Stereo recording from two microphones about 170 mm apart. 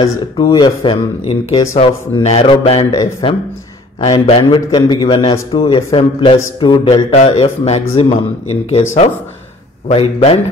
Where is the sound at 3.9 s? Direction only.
35° left (ahead or behind).